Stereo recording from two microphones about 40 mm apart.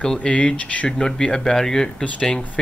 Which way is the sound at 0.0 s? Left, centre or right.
Left.